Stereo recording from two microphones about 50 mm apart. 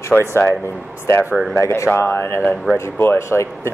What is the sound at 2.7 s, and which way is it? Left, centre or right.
Speech, left.